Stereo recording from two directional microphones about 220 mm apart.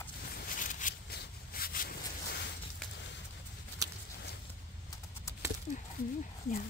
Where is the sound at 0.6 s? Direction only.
35° left (ahead or behind).